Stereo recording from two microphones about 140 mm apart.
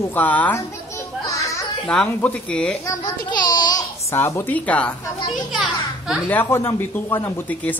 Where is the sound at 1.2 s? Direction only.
20° left (ahead or behind).